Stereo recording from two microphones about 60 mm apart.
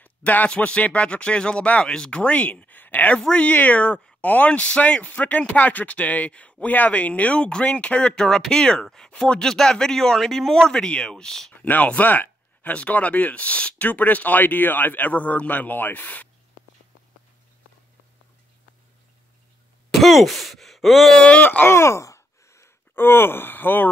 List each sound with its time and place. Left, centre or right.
0.0 s a sound: left
0.5 s speech: left
3.2 s a man's voice: centre
3.5 s a man's voice: left; by 11.5 s centre
11.5 s speech: left
19.9 s speech: centre
21.2 s speech: left
21.6 s sigh: left
22.9 s speech: left